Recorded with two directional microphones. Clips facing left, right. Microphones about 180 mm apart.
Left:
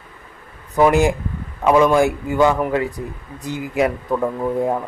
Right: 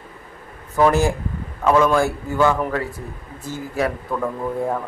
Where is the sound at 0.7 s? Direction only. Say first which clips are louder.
Left 2 dB; 15° left (ahead or behind).